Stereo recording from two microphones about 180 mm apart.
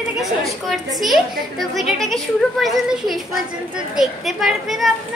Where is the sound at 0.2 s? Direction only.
Centre (ahead or behind).